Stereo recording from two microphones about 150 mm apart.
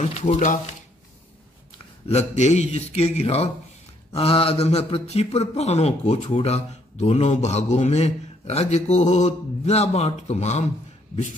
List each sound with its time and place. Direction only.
0.0 s speech: 45° left (ahead or behind)
2.0 s speech: 50° left (ahead or behind)